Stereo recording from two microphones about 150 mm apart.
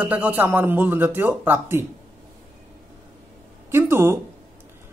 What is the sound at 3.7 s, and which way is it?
Speech, 15° right (ahead or behind).